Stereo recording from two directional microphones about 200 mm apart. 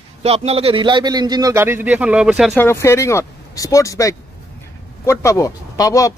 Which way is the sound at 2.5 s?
10° left (ahead or behind).